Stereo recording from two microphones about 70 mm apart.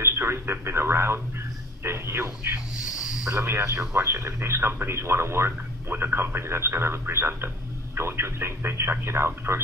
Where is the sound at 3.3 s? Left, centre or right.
Right.